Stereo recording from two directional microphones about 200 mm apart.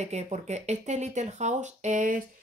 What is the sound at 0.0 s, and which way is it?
Speech, 35° right (ahead or behind).